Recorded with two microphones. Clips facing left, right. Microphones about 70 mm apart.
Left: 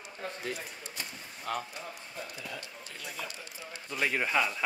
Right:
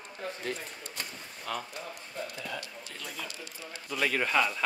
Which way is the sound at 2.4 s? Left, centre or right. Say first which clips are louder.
Right 3 dB; right.